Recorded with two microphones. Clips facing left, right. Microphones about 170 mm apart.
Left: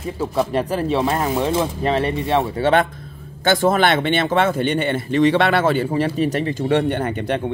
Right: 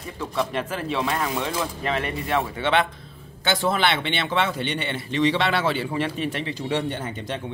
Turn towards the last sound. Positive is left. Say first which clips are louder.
# left 9 dB
turn(degrees=60)  # may be behind; listen again after turning